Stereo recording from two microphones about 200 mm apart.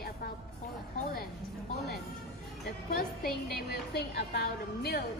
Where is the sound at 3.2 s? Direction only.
50° left (ahead or behind).